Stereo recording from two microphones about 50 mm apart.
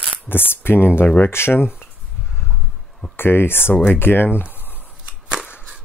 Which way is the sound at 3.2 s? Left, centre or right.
Left.